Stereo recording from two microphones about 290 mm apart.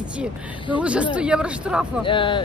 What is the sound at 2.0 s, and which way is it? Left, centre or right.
Speech, centre.